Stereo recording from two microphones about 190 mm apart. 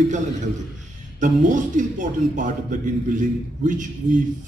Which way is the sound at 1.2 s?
40° right (ahead or behind).